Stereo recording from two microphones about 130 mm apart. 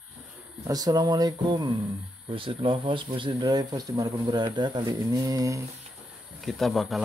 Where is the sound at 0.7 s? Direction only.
30° right (ahead or behind).